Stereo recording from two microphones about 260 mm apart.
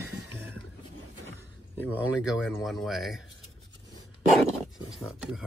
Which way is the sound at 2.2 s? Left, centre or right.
Centre.